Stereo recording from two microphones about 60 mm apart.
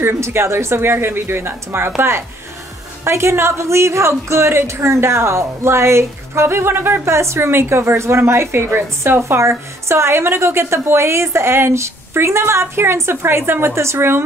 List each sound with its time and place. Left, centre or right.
0.0 s a woman's voice: right